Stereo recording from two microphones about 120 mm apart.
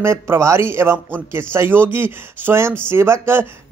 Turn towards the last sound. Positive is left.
turn(degrees=-20)  # may be behind; listen again after turning